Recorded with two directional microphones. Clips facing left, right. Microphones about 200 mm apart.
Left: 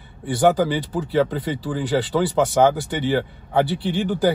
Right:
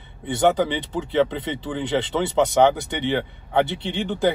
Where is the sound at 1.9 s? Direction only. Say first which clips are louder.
Left 2 dB; 25° right (ahead or behind).